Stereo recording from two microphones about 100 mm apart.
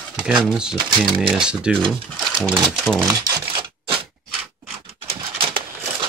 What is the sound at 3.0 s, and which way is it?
Speech, 40° right (ahead or behind).